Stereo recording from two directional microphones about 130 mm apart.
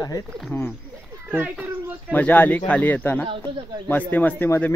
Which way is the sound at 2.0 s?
10° left (ahead or behind).